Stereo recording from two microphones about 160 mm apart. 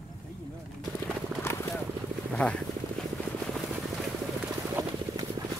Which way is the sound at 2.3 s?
5° left (ahead or behind).